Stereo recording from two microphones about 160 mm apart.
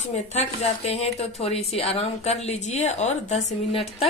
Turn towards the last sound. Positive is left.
turn(degrees=35)  # may be behind; listen again after turning